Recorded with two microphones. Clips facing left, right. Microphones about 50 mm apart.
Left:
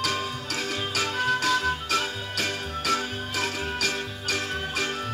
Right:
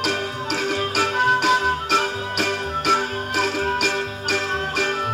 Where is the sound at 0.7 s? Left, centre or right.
Right.